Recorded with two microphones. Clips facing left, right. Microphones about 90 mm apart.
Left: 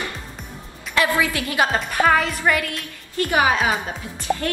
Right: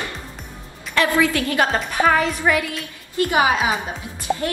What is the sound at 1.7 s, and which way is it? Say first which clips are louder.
Music: left 1 dB; centre (ahead or behind).